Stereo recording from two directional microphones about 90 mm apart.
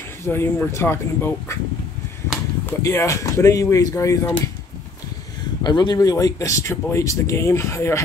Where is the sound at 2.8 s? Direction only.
35° left (ahead or behind).